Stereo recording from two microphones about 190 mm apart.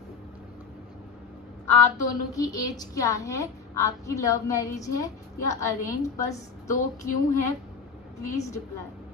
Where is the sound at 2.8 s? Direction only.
15° left (ahead or behind).